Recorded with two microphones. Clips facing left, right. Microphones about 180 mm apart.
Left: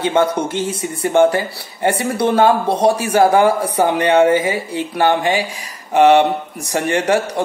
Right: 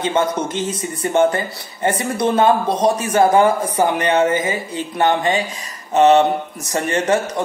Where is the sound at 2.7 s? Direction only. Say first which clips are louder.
Left 2 dB; 65° left (ahead or behind).